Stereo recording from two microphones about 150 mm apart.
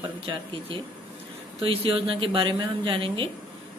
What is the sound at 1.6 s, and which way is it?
A woman's voice, 35° right (ahead or behind).